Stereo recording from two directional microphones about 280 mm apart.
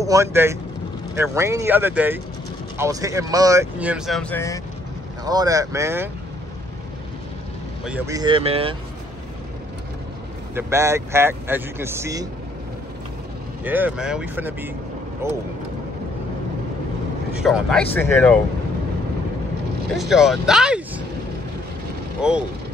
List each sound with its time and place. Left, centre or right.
0.0 s speech: centre
5.2 s speech: centre
7.8 s speech: centre
10.5 s speech: centre
13.7 s speech: centre
17.4 s speech: centre
20.0 s speech: centre
22.2 s speech: centre